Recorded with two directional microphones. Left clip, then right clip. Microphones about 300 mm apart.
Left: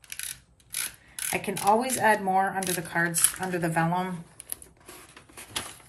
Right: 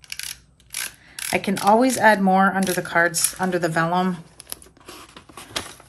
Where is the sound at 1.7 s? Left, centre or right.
Centre.